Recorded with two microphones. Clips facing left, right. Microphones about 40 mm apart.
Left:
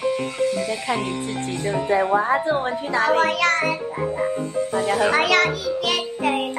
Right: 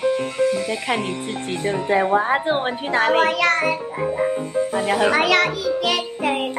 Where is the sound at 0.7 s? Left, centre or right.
Right.